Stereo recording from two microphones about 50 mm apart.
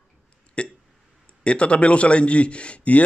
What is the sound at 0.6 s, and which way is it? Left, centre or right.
A man's voice, left.